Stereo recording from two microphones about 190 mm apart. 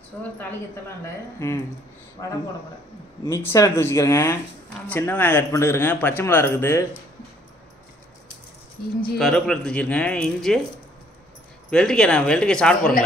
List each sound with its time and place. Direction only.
0.4 s speech: 10° left (ahead or behind)
3.3 s speech: 15° left (ahead or behind)
9.2 s speech: 5° left (ahead or behind)
11.7 s speech: 5° left (ahead or behind)